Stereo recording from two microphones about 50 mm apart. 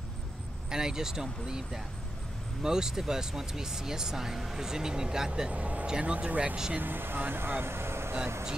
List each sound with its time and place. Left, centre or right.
0.7 s speech: centre
5.5 s speech: right
6.8 s speech: right